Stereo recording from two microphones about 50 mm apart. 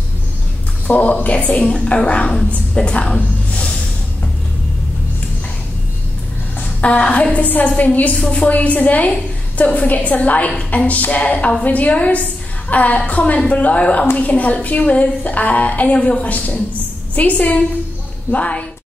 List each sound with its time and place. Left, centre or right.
0.8 s a woman's voice: left
6.6 s a sound: left
7.3 s a woman's voice: left